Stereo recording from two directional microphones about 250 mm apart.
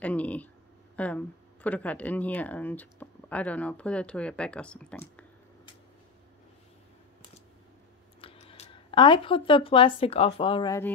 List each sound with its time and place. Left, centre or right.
0.0 s speech: centre
8.2 s speech: left